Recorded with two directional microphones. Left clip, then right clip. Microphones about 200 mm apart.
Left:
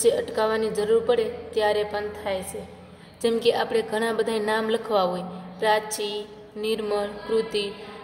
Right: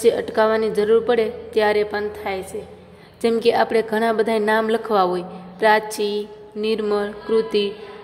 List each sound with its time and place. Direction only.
0.0 s a woman's voice: 30° right (ahead or behind)